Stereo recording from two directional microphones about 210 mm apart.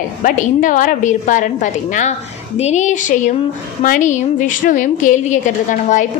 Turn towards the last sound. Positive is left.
turn(degrees=35)  # may be behind; listen again after turning